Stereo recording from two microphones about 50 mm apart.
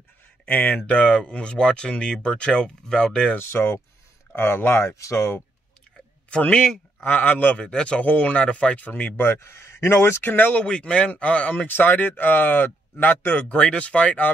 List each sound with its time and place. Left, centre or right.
0.5 s speech: left
0.8 s speech: left
3.3 s speech: left
4.8 s speech: left
6.3 s speech: centre
7.1 s speech: left
7.5 s speech: centre
8.0 s speech: left
8.8 s speech: left
9.2 s speech: left
10.2 s speech: left
11.6 s speech: left
13.5 s speech: left